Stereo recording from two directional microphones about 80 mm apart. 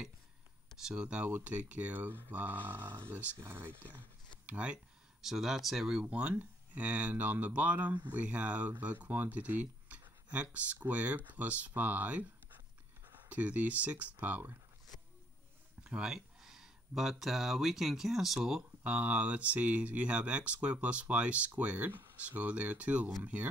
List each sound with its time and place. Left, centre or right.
0.8 s speech: centre; by 4.0 s right
4.5 s speech: centre
5.2 s speech: centre; by 14.5 s right
15.8 s speech: centre